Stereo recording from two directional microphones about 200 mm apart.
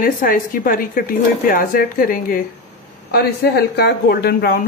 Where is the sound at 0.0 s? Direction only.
45° left (ahead or behind).